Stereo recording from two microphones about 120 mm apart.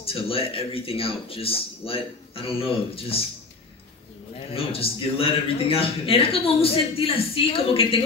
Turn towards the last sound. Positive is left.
turn(degrees=50)  # may be behind; listen again after turning